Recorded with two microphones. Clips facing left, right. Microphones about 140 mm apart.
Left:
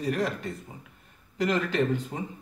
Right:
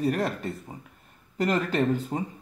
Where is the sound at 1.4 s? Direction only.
45° right (ahead or behind).